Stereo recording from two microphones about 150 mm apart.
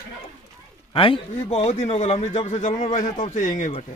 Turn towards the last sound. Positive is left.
turn(degrees=55)  # may be behind; listen again after turning